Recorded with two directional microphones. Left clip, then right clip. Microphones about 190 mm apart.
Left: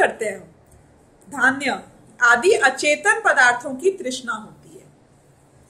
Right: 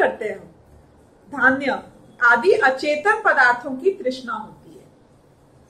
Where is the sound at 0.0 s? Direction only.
55° left (ahead or behind).